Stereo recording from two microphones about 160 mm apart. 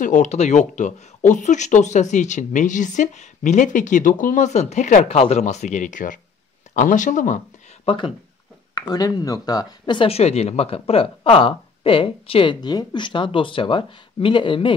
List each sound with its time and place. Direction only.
0.0 s speech: 50° left (ahead or behind)
7.8 s speech: 30° left (ahead or behind)